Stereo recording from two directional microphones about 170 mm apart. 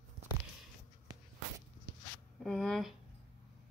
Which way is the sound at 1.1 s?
25° right (ahead or behind).